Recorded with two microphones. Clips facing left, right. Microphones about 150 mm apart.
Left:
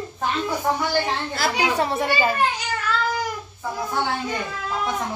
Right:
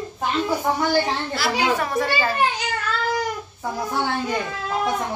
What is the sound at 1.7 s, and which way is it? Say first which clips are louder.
Speech: left 1 dB; 25° left (ahead or behind).